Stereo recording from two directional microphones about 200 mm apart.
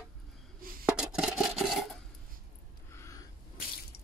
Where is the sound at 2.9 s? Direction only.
15° left (ahead or behind).